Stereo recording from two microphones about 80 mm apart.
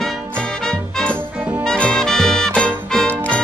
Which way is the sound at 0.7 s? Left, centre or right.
Centre.